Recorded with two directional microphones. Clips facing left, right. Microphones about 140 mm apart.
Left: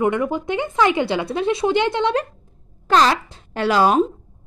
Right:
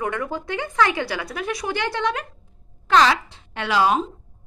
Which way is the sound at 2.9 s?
40° left (ahead or behind).